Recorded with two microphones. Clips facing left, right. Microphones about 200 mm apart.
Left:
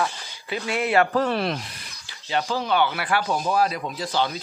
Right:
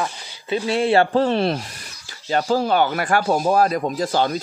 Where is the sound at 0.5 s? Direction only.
30° right (ahead or behind).